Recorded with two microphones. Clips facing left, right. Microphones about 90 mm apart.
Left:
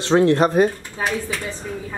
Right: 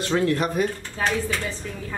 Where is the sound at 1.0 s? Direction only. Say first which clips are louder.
Left 1 dB; 15° left (ahead or behind).